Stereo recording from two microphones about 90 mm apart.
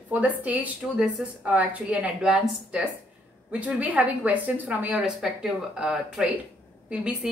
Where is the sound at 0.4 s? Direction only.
15° right (ahead or behind).